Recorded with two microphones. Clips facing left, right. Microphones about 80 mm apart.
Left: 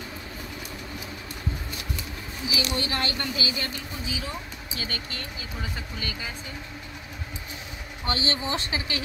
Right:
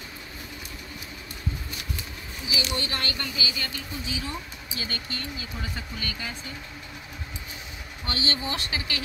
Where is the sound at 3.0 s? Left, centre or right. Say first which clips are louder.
Left 2 dB; left.